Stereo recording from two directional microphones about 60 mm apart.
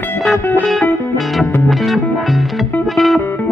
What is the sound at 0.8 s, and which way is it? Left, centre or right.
Music, left.